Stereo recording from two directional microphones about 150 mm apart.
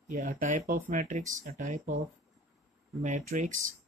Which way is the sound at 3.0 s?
55° right (ahead or behind).